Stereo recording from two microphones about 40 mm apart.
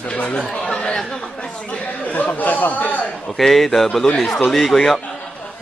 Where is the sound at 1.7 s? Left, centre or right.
Left.